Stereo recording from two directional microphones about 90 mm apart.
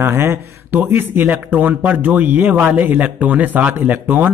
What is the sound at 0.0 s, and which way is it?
Speech, 25° right (ahead or behind).